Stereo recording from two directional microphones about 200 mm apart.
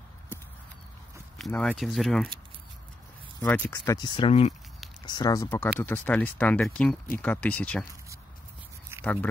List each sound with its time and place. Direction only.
1.4 s speech: 5° left (ahead or behind)
3.3 s speech: 10° left (ahead or behind); by 4.6 s 30° left (ahead or behind)
5.0 s speech: 20° left (ahead or behind)
9.0 s speech: 10° left (ahead or behind)